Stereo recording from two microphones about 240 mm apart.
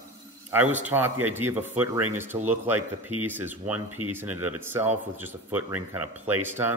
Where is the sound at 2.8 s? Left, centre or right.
Right.